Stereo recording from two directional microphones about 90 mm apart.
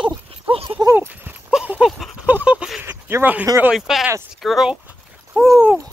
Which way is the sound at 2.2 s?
15° right (ahead or behind).